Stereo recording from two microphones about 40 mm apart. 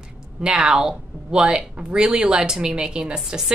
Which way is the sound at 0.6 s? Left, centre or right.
Centre.